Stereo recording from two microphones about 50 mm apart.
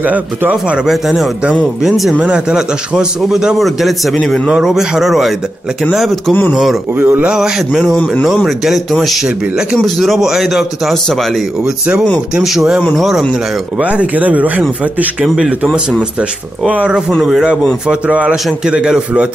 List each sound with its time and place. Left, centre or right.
0.8 s a man's voice: centre
2.1 s a man's voice: right
3.5 s a man's voice: centre
7.0 s speech: right
7.3 s a man's voice: centre
12.5 s a man's voice: centre
12.9 s a man's voice: centre
13.7 s speech: right
15.2 s a man's voice: centre
16.6 s speech: right
17.2 s a man's voice: centre
17.8 s speech: right